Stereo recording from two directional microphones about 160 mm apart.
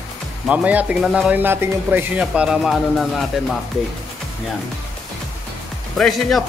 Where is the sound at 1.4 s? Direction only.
15° right (ahead or behind).